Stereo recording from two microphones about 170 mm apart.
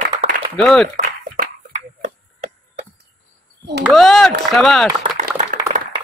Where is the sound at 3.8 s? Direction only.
Centre (ahead or behind).